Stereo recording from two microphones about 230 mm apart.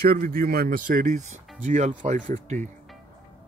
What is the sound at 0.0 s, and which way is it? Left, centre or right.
Speech, right.